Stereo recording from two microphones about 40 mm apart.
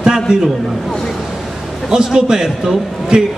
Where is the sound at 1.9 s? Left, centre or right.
Centre.